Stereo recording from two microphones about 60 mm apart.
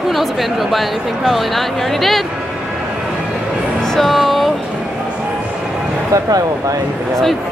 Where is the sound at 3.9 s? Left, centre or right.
Centre.